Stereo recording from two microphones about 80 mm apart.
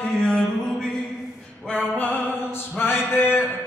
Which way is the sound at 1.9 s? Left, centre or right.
Left.